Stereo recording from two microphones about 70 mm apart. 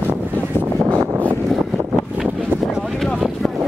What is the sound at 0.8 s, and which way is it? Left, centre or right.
Vehicle, right.